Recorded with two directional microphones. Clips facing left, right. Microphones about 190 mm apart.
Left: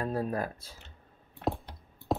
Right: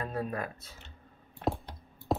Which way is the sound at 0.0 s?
35° left (ahead or behind).